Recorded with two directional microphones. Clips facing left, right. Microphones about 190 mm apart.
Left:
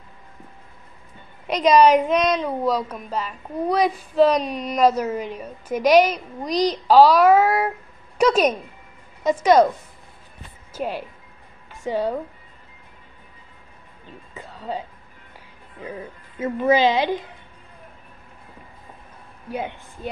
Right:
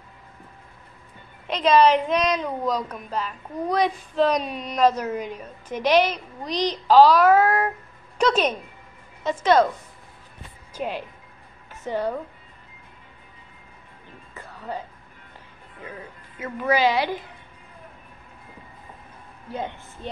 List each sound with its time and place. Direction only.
1.5 s speech: 10° left (ahead or behind)
10.7 s speech: 10° left (ahead or behind)
14.3 s music: 15° left (ahead or behind)
16.3 s a woman's voice: 25° left (ahead or behind)
19.5 s speech: 10° left (ahead or behind)